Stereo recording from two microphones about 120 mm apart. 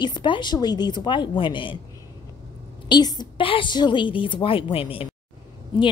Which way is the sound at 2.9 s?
40° left (ahead or behind).